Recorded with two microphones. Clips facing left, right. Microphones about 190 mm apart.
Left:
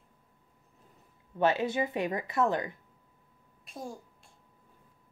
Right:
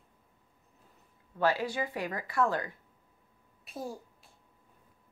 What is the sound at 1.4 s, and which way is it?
Speech, 20° left (ahead or behind).